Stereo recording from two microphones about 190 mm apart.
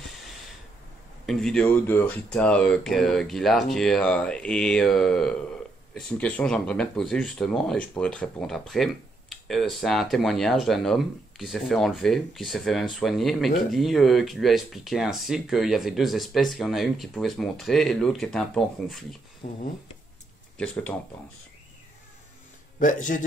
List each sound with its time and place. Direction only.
1.2 s speech: centre (ahead or behind)
19.4 s a man's voice: 45° left (ahead or behind)
20.5 s speech: 5° left (ahead or behind)
22.8 s a man's voice: 45° left (ahead or behind)